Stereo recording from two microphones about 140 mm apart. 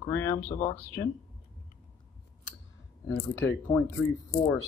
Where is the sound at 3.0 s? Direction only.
20° left (ahead or behind).